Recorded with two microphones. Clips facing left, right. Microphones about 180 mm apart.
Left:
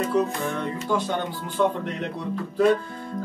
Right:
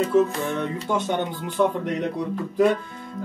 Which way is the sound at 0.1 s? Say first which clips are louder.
Right 3 dB; 25° right (ahead or behind).